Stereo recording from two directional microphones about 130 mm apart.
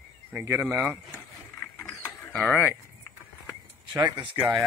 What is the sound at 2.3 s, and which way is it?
Speech, 10° left (ahead or behind).